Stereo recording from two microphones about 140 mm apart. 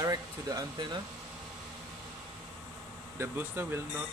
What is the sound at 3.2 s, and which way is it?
Speech, 15° right (ahead or behind).